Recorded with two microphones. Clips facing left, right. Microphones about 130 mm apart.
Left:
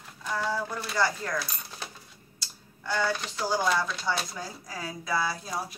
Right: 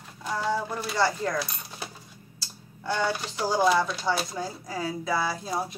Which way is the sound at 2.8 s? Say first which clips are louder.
Right 1 dB; 20° right (ahead or behind).